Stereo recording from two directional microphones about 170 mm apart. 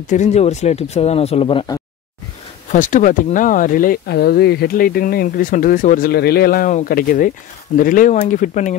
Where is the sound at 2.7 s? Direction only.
50° left (ahead or behind).